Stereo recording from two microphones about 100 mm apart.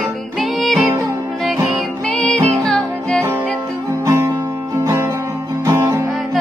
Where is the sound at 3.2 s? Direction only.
20° right (ahead or behind).